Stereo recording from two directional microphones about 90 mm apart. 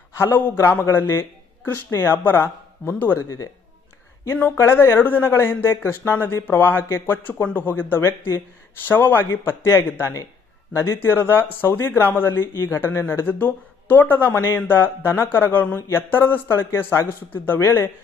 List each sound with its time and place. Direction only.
0.3 s speech: 25° left (ahead or behind)
4.6 s speech: 25° left (ahead or behind)